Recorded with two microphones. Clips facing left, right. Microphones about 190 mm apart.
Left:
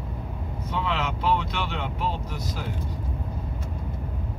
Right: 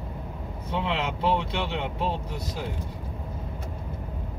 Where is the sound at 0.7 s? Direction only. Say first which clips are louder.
Even; 25° right (ahead or behind).